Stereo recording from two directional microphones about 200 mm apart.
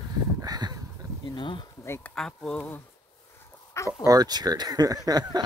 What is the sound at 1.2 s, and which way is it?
Speech, 25° left (ahead or behind).